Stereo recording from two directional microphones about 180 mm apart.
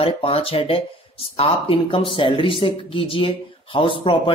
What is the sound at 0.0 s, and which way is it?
A man's voice, 30° left (ahead or behind).